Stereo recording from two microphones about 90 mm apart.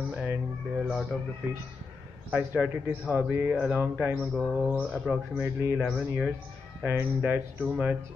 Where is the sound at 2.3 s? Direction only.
20° right (ahead or behind).